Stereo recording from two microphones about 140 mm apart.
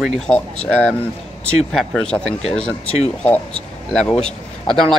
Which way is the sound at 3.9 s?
5° left (ahead or behind).